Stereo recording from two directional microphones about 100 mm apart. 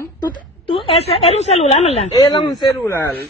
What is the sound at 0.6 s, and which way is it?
A woman's voice, 65° left (ahead or behind).